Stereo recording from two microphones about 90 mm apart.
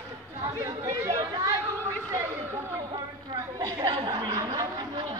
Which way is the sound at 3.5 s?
45° right (ahead or behind).